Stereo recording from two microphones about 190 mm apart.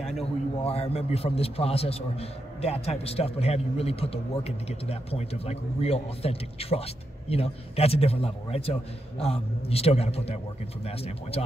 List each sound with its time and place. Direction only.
0.2 s a man's voice: 30° left (ahead or behind)